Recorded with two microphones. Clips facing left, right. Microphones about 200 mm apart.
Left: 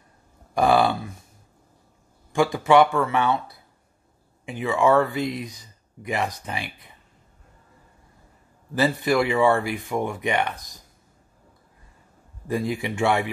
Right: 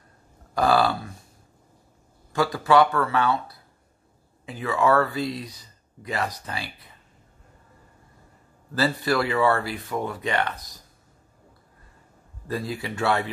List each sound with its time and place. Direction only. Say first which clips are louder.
0.6 s speech: left 2 dB; 20° left (ahead or behind)
2.3 s speech: left 2 dB; 20° left (ahead or behind)
4.5 s speech: left 2 dB; 15° left (ahead or behind)
8.7 s speech: left 3 dB; 15° left (ahead or behind)
12.4 s speech: left 4 dB; 15° left (ahead or behind)